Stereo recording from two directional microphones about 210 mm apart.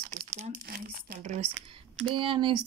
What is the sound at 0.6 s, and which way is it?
Speech, 45° right (ahead or behind).